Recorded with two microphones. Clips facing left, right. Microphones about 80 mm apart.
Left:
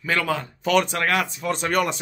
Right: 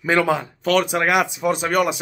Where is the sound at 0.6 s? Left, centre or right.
Centre.